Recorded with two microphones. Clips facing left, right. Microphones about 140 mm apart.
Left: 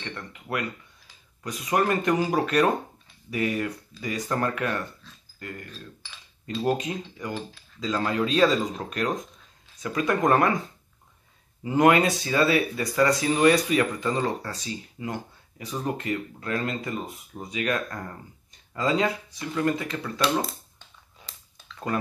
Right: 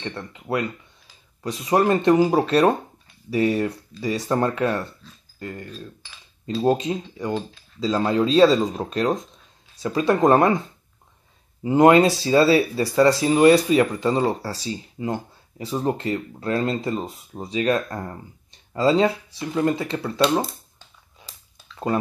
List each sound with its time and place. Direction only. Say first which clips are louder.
0.0 s speech: right 5 dB; 25° right (ahead or behind)
11.6 s speech: right 5 dB; 25° right (ahead or behind)